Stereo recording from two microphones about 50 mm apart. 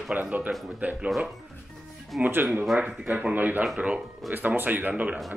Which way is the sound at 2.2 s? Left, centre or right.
Right.